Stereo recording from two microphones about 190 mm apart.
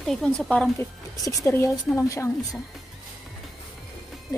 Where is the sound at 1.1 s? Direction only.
20° left (ahead or behind).